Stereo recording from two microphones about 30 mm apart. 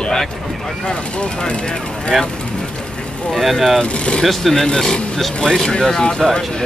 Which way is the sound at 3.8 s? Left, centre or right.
Left.